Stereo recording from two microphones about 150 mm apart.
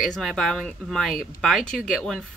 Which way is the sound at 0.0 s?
Centre (ahead or behind).